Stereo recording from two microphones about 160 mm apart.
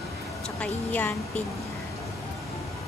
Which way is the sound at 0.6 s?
10° left (ahead or behind).